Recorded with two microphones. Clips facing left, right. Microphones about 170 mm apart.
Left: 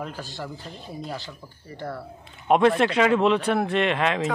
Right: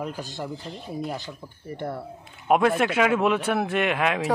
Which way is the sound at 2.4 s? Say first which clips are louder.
Left 2 dB; 5° right (ahead or behind).